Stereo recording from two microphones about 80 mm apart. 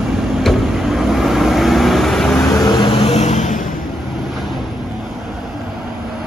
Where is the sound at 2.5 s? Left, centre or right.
Left.